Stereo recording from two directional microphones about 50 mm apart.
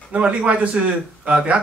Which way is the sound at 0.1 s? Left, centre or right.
Right.